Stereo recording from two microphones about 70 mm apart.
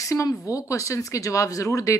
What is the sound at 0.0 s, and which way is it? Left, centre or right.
Speech, left.